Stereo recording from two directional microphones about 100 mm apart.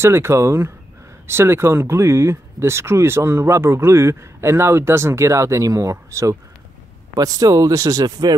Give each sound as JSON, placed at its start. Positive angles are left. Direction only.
{"t": 0.0, "sound": "speech", "side_deg": -25}